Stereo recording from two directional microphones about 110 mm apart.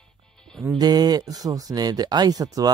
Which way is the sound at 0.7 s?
40° right (ahead or behind).